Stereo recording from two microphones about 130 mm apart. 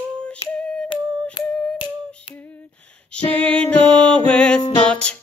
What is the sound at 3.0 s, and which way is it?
Music, 10° left (ahead or behind).